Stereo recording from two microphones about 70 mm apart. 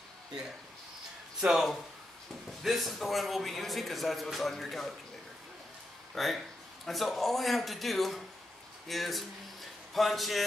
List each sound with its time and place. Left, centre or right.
1.4 s a man's voice: centre
6.1 s a man's voice: centre